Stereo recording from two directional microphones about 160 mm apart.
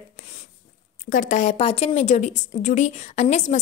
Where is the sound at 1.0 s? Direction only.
55° left (ahead or behind).